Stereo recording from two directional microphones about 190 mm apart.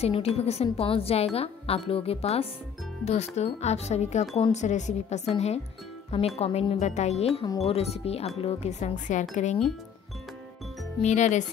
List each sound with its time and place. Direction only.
0.0 s a woman's voice: 30° left (ahead or behind)
11.0 s a woman's voice: 40° left (ahead or behind)